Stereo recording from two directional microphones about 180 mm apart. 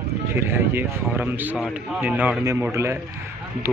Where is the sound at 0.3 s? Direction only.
15° right (ahead or behind).